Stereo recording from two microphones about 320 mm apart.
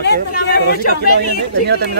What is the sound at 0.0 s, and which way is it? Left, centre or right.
Speech, left.